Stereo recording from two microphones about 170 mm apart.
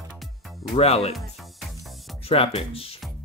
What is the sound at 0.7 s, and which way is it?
Speech, 35° left (ahead or behind).